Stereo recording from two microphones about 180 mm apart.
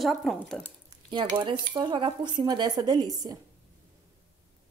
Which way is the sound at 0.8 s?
25° right (ahead or behind).